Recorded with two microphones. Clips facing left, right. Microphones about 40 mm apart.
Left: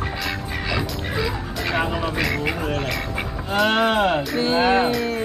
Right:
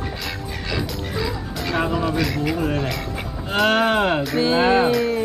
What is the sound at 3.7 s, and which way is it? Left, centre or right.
Speech, right.